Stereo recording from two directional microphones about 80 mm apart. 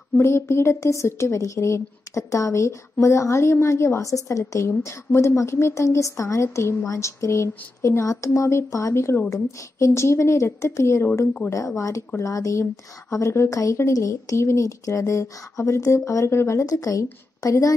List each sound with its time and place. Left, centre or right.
0.2 s speech: left
12.2 s a woman's voice: left